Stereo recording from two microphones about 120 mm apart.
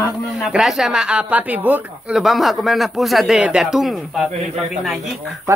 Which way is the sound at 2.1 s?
Centre (ahead or behind).